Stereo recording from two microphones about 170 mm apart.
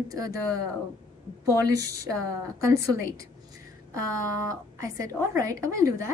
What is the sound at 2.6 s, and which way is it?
Speech, 15° right (ahead or behind).